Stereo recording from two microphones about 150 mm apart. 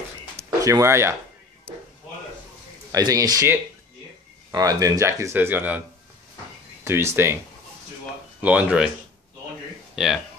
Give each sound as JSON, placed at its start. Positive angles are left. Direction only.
{"t": 0.6, "sound": "speech", "side_deg": -20}
{"t": 2.9, "sound": "speech", "side_deg": -25}
{"t": 6.8, "sound": "speech", "side_deg": -15}
{"t": 8.4, "sound": "speech", "side_deg": -10}
{"t": 9.9, "sound": "speech", "side_deg": 0}